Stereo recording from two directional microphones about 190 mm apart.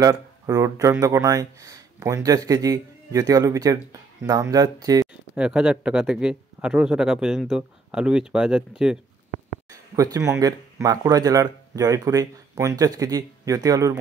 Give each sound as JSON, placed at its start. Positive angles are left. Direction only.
{"t": 0.0, "sound": "speech", "side_deg": -20}
{"t": 5.0, "sound": "speech", "side_deg": -5}
{"t": 9.9, "sound": "speech", "side_deg": -15}